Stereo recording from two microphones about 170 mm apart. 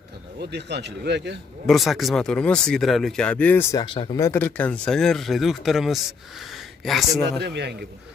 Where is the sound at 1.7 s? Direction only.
Centre (ahead or behind).